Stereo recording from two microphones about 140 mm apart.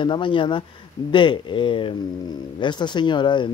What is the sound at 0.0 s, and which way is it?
Speech, 35° left (ahead or behind).